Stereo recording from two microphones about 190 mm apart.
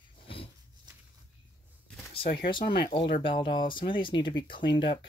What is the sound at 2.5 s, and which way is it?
Speech, 25° left (ahead or behind).